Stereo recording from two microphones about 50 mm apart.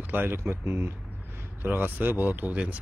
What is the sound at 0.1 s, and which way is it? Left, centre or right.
Speech, right.